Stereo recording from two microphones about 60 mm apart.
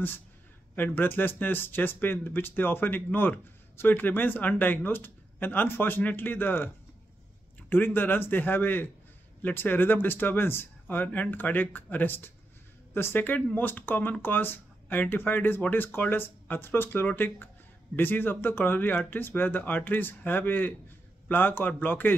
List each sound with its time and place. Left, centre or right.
0.7 s speech: left
7.7 s speech: left